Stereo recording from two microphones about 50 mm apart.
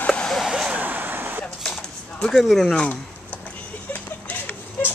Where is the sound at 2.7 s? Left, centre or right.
Left.